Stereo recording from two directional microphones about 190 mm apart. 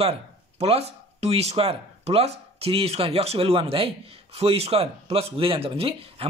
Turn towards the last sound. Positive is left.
turn(degrees=-30)  # may be behind; listen again after turning